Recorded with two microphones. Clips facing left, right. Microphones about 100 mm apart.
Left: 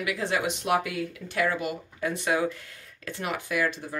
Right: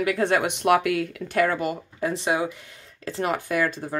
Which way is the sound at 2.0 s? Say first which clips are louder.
Right 2 dB; 30° right (ahead or behind).